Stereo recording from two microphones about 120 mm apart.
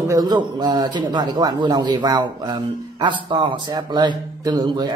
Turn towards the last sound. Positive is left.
turn(degrees=-40)  # may be behind; listen again after turning